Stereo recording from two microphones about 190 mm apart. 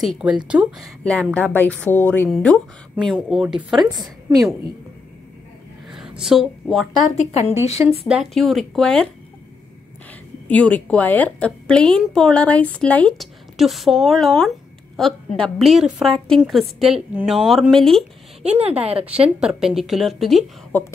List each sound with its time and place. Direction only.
0.0 s a woman's voice: 5° right (ahead or behind)
5.9 s a woman's voice: 5° right (ahead or behind)
7.1 s a woman's voice: 35° left (ahead or behind)
8.1 s speech: centre (ahead or behind)
10.5 s a woman's voice: 5° left (ahead or behind)
18.4 s a woman's voice: 35° right (ahead or behind)
19.2 s speech: 5° right (ahead or behind)
20.7 s a woman's voice: 10° left (ahead or behind)